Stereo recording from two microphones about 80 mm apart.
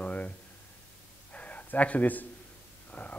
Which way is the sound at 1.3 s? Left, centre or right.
Centre.